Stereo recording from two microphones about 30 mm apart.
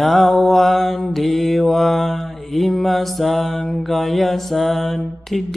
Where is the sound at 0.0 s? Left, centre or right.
Centre.